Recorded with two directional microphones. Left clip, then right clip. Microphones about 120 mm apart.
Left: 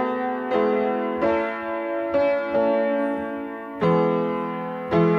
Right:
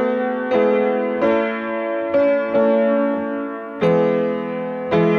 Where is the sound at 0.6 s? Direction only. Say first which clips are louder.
Right 5 dB; 30° right (ahead or behind).